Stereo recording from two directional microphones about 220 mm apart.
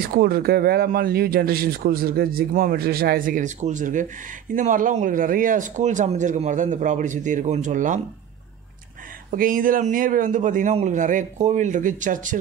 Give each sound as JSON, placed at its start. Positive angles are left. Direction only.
{"t": 0.0, "sound": "speech", "side_deg": -45}
{"t": 9.3, "sound": "speech", "side_deg": -40}